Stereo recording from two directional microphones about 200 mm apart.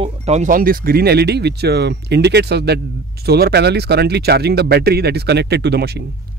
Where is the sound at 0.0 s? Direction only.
35° right (ahead or behind); by 6.0 s 55° right (ahead or behind).